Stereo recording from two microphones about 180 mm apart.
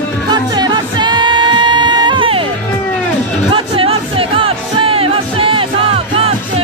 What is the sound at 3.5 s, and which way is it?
Music, 30° right (ahead or behind).